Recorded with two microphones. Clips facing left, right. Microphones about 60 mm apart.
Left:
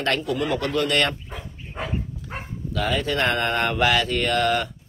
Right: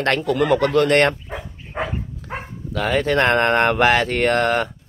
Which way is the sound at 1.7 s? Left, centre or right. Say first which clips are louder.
Right 6 dB; right.